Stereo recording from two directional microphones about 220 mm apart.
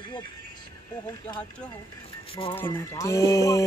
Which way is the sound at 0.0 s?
20° left (ahead or behind).